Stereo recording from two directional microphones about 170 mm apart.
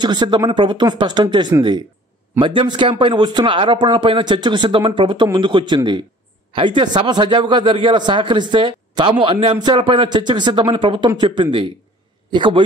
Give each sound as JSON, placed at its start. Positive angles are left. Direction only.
{"t": 0.0, "sound": "a man's voice", "side_deg": -25}